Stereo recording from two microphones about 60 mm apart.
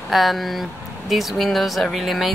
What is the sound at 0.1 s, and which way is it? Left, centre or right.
Speech, centre.